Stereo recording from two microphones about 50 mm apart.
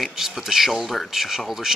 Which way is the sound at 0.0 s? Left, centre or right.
Centre.